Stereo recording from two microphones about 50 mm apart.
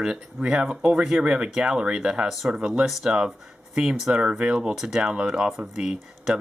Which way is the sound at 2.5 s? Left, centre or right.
Centre.